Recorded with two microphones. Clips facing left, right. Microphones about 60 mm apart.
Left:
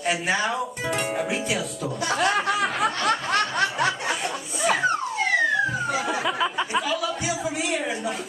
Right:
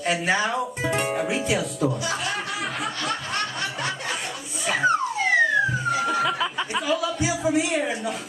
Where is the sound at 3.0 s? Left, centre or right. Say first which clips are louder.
Left 4 dB; left.